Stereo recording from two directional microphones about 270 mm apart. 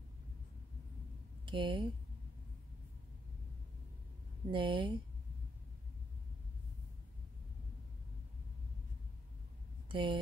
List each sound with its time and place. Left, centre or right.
1.4 s speech: centre
4.5 s speech: centre
9.8 s speech: centre